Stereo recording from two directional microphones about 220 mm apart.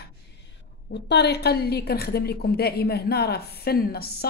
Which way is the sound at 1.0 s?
50° left (ahead or behind).